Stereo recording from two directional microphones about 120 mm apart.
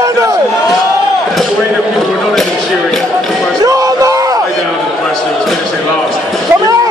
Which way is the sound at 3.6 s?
30° right (ahead or behind).